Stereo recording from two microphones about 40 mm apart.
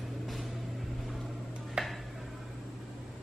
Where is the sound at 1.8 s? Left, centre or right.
Centre.